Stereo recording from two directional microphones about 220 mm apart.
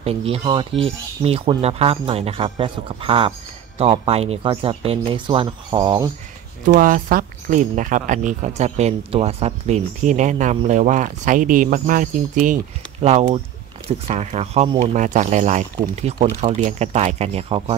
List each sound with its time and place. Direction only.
0.0 s speech: 25° right (ahead or behind)
6.6 s speech: 40° right (ahead or behind)